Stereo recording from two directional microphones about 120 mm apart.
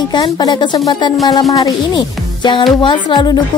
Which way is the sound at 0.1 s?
35° left (ahead or behind).